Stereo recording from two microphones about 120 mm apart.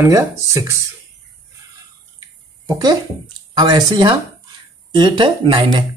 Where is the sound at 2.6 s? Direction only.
35° right (ahead or behind).